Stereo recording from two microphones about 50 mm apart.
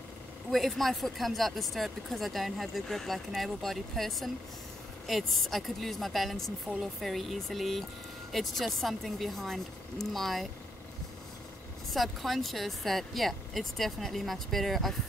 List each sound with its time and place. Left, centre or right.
0.5 s speech: centre
11.9 s speech: centre